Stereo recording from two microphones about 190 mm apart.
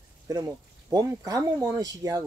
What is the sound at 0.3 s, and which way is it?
Speech, 20° right (ahead or behind).